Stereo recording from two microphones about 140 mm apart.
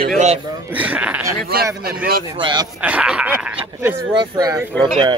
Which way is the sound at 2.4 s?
35° right (ahead or behind).